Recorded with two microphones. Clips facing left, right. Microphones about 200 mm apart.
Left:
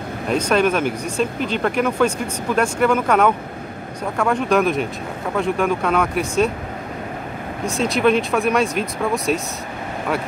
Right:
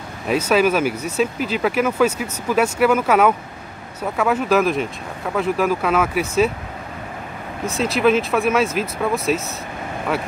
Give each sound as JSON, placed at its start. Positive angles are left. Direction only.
{"t": 0.3, "sound": "speech", "side_deg": -5}
{"t": 7.7, "sound": "speech", "side_deg": 0}